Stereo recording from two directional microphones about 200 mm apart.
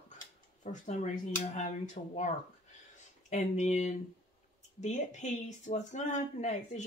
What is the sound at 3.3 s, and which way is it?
Speech, 35° left (ahead or behind).